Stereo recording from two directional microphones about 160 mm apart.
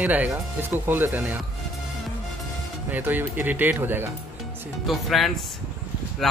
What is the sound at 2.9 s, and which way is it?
Speech, 10° right (ahead or behind).